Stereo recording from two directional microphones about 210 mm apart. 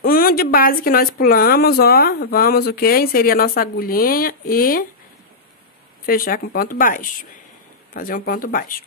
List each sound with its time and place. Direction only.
0.0 s speech: 45° left (ahead or behind)
6.0 s speech: 45° left (ahead or behind)